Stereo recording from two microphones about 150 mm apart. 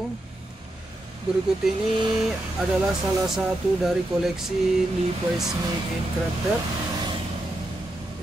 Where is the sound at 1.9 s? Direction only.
30° right (ahead or behind).